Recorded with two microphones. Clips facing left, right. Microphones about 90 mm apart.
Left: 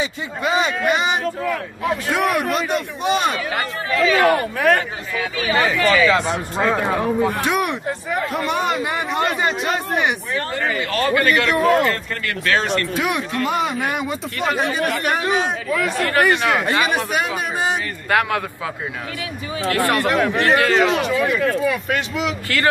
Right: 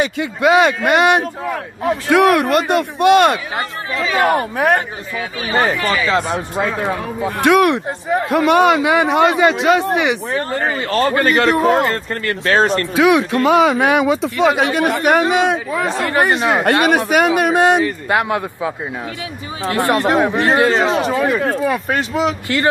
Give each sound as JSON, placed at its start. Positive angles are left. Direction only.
{"t": 0.0, "sound": "a man's voice", "side_deg": -65}
{"t": 1.2, "sound": "speech", "side_deg": -25}
{"t": 2.0, "sound": "a man's voice", "side_deg": -85}
{"t": 3.5, "sound": "speech", "side_deg": -25}
{"t": 5.5, "sound": "a man's voice", "side_deg": -40}
{"t": 5.8, "sound": "speech", "side_deg": -20}
{"t": 7.4, "sound": "a man's voice", "side_deg": -70}
{"t": 10.3, "sound": "a man's voice", "side_deg": -35}
{"t": 12.9, "sound": "speech", "side_deg": -90}
{"t": 14.6, "sound": "a man's voice", "side_deg": -70}
{"t": 15.8, "sound": "a man's voice", "side_deg": -25}
{"t": 16.6, "sound": "speech", "side_deg": -60}
{"t": 17.8, "sound": "a man's voice", "side_deg": -20}